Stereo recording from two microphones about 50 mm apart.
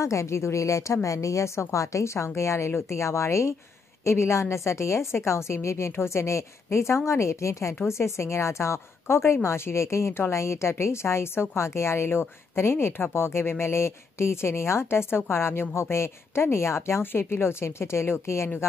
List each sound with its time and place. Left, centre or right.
0.0 s a woman's voice: left
4.0 s a woman's voice: left
5.1 s a woman's voice: left
7.8 s a woman's voice: left
12.1 s speech: left
17.0 s speech: left